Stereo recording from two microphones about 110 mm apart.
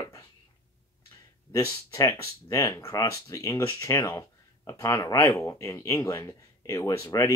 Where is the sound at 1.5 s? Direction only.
25° left (ahead or behind).